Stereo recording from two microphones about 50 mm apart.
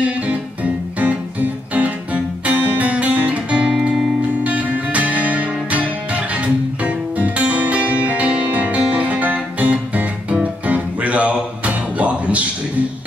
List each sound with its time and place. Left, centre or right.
0.9 s music: right